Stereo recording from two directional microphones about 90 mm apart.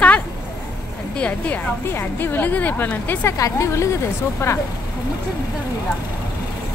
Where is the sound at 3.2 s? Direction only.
35° left (ahead or behind).